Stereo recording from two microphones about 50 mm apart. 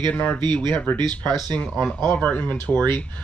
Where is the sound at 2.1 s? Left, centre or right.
Left.